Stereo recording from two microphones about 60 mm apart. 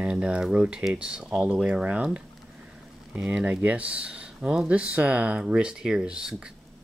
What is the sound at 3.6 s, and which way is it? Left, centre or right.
Speech, right.